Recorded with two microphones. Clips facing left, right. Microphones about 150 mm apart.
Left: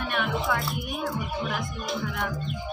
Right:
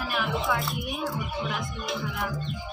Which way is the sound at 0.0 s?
5° right (ahead or behind).